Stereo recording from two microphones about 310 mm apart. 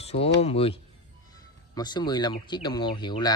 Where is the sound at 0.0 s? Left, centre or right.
Centre.